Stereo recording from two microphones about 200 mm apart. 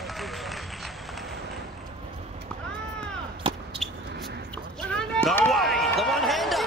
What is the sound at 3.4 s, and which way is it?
Basketball bounce, 25° right (ahead or behind).